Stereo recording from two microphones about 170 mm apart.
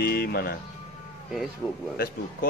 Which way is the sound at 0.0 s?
65° left (ahead or behind).